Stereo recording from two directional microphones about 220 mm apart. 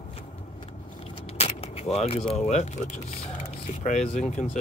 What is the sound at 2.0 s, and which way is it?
Speech, 25° left (ahead or behind).